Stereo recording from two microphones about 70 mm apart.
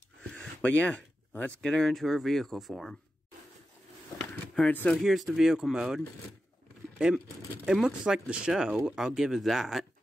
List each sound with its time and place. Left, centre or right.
0.3 s a sound: left
1.6 s speech: centre
4.6 s speech: left
5.0 s speech: centre
7.6 s speech: centre